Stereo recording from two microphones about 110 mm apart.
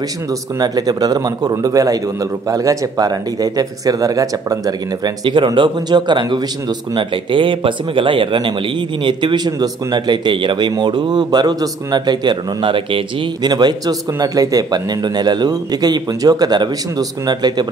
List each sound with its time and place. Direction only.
0.3 s speech: 35° right (ahead or behind)